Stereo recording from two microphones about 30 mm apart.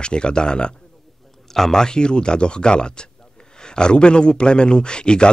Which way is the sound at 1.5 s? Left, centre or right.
Centre.